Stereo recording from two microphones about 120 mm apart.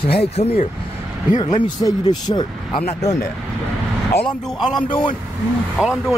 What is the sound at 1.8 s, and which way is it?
Speech, 35° left (ahead or behind).